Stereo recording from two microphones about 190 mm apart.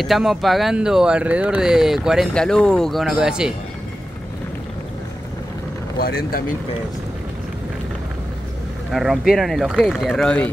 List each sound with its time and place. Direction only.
0.0 s speech: centre (ahead or behind)
5.9 s speech: 55° left (ahead or behind)
8.9 s speech: centre (ahead or behind)